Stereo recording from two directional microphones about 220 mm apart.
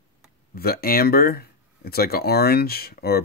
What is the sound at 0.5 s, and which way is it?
Speech, 45° left (ahead or behind).